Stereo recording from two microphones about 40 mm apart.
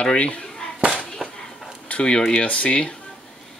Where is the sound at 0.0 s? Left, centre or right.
Left.